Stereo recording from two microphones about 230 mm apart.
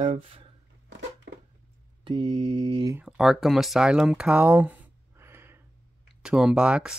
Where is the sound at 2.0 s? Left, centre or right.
Right.